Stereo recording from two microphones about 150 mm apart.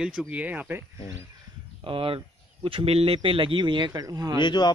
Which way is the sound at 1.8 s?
35° right (ahead or behind).